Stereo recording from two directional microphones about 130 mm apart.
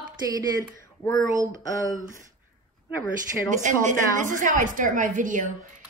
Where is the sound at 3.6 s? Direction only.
75° right (ahead or behind).